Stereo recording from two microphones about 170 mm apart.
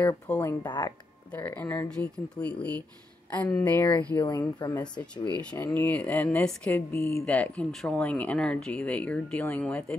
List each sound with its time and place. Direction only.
0.0 s speech: 10° left (ahead or behind)
0.7 s speech: 25° left (ahead or behind)
1.3 s speech: 10° left (ahead or behind)
4.2 s speech: 25° left (ahead or behind); by 9.9 s 5° left (ahead or behind)